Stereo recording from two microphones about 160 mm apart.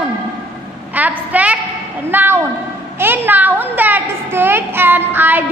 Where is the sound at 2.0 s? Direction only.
15° right (ahead or behind).